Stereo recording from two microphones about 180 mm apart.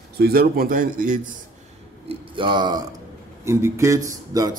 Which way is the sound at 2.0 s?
25° right (ahead or behind).